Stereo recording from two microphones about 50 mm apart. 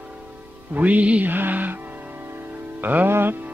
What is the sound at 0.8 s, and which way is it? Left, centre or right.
Music, right.